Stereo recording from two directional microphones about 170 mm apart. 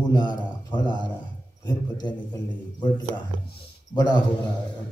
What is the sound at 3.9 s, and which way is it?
Speech, 25° left (ahead or behind).